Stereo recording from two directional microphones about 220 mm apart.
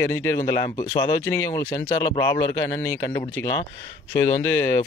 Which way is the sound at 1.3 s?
15° left (ahead or behind).